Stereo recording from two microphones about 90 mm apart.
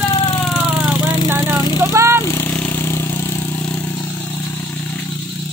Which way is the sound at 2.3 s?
30° left (ahead or behind).